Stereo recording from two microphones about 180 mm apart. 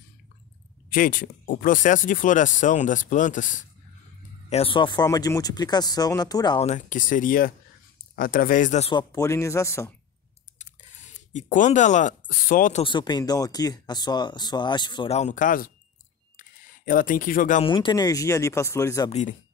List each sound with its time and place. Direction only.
0.8 s speech: 50° left (ahead or behind)
4.5 s speech: 30° left (ahead or behind)
6.6 s speech: 45° left (ahead or behind)
8.9 s speech: 20° left (ahead or behind)
10.6 s speech: 40° left (ahead or behind)
12.8 s speech: 25° left (ahead or behind)
15.1 s speech: 40° left (ahead or behind)
16.3 s camera: 50° left (ahead or behind)
17.6 s speech: 25° left (ahead or behind)
19.0 s speech: 40° left (ahead or behind)